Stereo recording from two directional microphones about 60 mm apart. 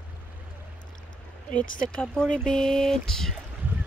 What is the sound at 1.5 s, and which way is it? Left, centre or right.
Speech, left.